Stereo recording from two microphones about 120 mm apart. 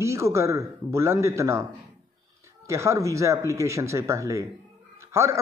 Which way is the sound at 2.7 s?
25° right (ahead or behind).